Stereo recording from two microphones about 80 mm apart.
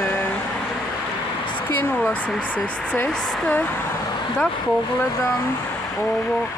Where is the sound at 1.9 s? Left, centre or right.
Left.